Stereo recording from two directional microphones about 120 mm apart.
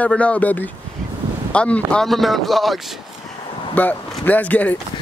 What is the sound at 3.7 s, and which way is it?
Speech, 15° left (ahead or behind).